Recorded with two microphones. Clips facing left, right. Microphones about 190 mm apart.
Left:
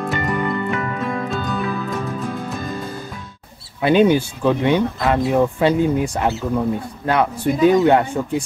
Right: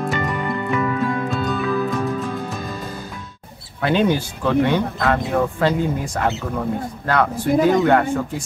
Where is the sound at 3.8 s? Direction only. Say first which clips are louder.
Left 4 dB; 15° left (ahead or behind).